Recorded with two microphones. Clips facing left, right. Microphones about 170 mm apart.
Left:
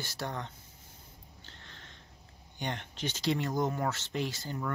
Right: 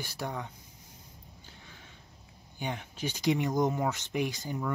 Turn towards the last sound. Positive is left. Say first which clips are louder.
# right 3 dB
turn(degrees=-10)  # may be behind; listen again after turning